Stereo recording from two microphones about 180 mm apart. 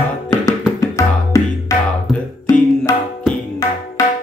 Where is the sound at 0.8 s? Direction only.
15° left (ahead or behind).